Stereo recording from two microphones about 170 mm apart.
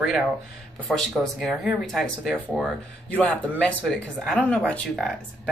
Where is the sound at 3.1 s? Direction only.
10° left (ahead or behind).